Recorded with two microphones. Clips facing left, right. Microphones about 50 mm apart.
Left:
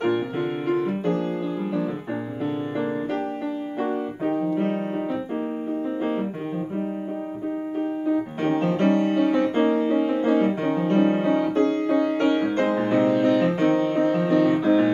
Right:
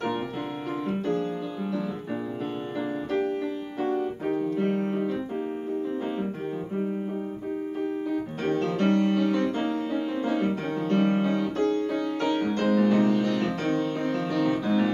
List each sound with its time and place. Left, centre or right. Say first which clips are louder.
0.7 s music: left 4 dB; left
3.8 s piano: even; left
8.1 s music: left 8 dB; left